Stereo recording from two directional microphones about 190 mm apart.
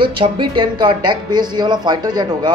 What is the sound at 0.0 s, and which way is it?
Speech, 25° right (ahead or behind).